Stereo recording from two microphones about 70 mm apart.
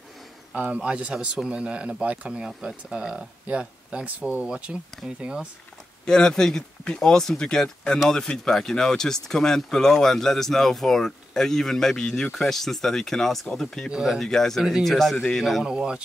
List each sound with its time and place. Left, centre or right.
0.6 s speech: centre
6.0 s speech: centre
15.6 s speech: centre